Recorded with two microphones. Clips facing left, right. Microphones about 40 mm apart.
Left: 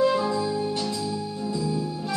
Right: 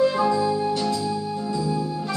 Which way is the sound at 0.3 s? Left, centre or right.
Centre.